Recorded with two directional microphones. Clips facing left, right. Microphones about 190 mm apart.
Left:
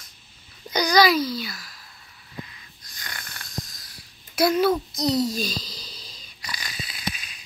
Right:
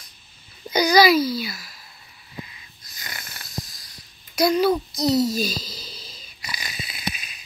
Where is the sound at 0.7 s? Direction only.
5° right (ahead or behind).